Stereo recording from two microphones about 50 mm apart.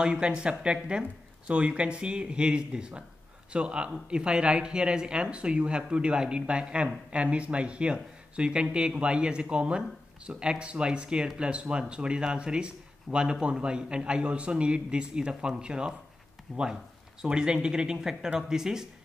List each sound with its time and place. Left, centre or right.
0.0 s speech: centre
16.5 s speech: centre
17.2 s speech: centre